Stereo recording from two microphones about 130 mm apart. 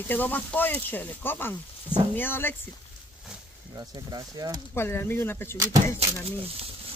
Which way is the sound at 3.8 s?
30° right (ahead or behind).